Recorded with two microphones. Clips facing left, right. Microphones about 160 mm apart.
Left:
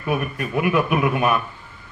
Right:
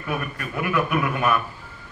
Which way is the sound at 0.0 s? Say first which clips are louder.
Left 5 dB; 20° left (ahead or behind).